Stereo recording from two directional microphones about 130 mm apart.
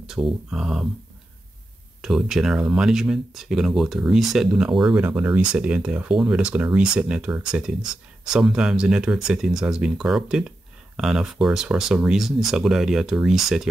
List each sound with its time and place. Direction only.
0.0 s speech: 5° right (ahead or behind)
2.0 s speech: centre (ahead or behind)